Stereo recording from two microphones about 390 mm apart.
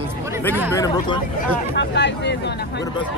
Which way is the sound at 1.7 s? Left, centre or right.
Left.